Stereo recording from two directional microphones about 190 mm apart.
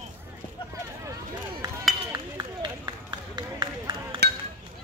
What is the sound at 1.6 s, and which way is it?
Run, 20° right (ahead or behind).